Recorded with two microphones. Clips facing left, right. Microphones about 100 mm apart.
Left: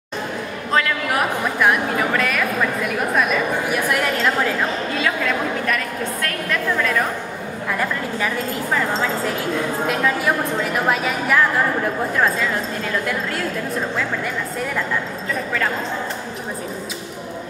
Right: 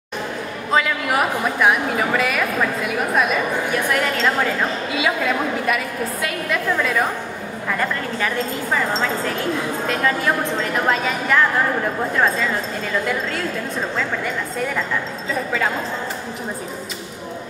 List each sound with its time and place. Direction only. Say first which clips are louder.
0.7 s a woman's voice: right 1 dB; 5° right (ahead or behind)
12.9 s a woman's voice: right 2 dB; centre (ahead or behind)